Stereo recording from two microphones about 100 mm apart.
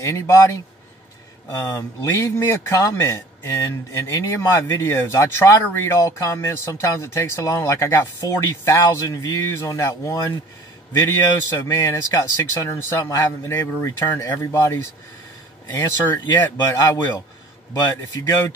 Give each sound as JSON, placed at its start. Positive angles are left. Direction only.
{"t": 0.0, "sound": "a man's voice", "side_deg": 30}